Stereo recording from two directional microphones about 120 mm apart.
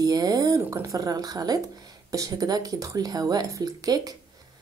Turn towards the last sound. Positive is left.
turn(degrees=-30)  # may be behind; listen again after turning